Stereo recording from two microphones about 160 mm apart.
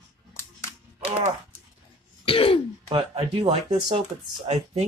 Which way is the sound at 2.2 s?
35° left (ahead or behind).